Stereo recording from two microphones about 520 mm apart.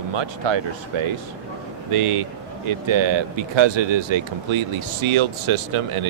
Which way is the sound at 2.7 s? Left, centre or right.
Right.